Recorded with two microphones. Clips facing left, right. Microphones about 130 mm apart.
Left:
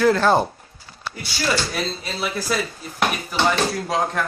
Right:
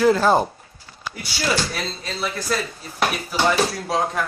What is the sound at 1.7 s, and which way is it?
Speech, 5° left (ahead or behind).